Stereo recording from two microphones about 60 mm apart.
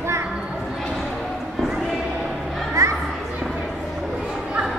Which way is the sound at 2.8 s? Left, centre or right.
Right.